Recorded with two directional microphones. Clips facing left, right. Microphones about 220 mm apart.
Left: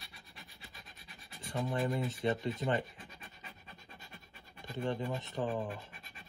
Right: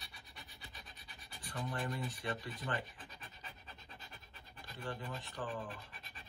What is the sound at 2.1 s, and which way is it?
Rub, 25° left (ahead or behind).